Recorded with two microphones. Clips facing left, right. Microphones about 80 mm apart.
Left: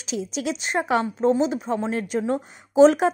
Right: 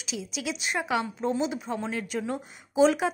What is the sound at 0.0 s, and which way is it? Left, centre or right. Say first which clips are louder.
A woman's voice: left 7 dB; left.